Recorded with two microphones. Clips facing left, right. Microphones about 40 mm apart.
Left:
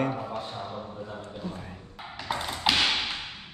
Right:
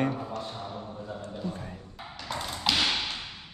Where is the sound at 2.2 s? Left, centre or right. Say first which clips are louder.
Left 3 dB; centre.